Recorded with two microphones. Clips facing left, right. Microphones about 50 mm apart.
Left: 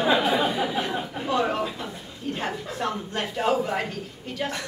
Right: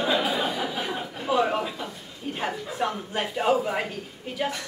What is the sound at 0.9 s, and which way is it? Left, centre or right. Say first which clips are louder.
A man's voice: even; centre.